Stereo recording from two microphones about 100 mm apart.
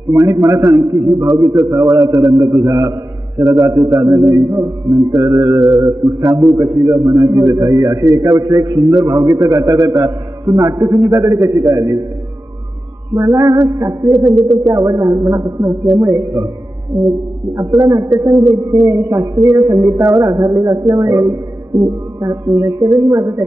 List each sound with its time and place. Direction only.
0.1 s a man's voice: 30° right (ahead or behind)
13.1 s a man's voice: 30° right (ahead or behind)
17.6 s a man's voice: 35° right (ahead or behind)